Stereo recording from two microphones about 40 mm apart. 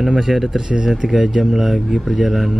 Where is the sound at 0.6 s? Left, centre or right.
Centre.